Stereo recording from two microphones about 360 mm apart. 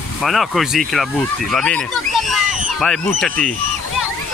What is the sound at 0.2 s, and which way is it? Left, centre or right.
Speech, centre.